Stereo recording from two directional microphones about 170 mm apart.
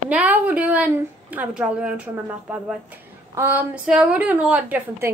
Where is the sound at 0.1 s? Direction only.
10° right (ahead or behind).